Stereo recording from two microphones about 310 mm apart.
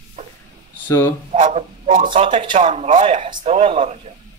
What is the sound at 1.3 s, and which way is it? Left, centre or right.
A man's voice, right.